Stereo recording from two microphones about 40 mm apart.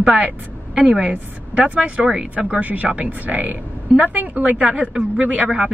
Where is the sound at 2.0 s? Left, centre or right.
Right.